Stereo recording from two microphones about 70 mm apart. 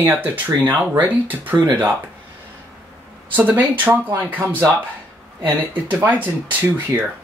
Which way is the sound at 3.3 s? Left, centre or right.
Right.